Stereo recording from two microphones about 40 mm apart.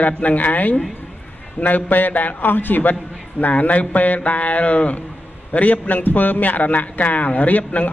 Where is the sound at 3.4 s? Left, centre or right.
Left.